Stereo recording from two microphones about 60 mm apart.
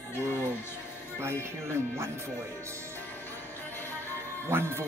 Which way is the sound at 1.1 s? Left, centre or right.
Right.